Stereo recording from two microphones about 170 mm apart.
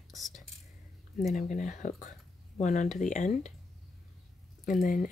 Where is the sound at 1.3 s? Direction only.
50° left (ahead or behind).